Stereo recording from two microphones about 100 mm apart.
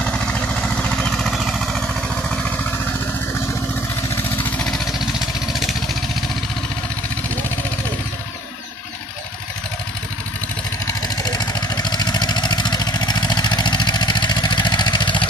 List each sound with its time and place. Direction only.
0.0 s vehicle: 10° left (ahead or behind)
4.1 s vehicle: 20° left (ahead or behind)
5.5 s vehicle: centre (ahead or behind)
11.2 s vehicle: 45° left (ahead or behind)